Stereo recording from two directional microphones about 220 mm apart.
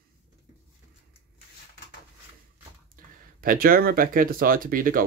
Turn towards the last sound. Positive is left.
turn(degrees=-40)  # may be behind; listen again after turning